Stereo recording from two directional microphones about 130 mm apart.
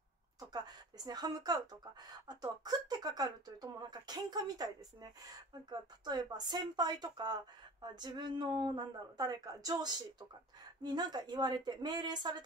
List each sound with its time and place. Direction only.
0.4 s speech: 30° right (ahead or behind)